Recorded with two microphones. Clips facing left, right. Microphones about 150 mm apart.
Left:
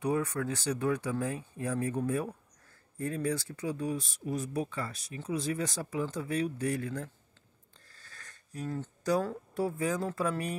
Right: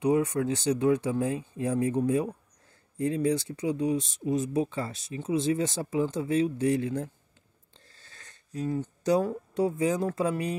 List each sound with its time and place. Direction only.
0.0 s speech: 20° right (ahead or behind)